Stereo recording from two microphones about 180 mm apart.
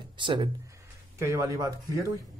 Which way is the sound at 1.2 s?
15° right (ahead or behind).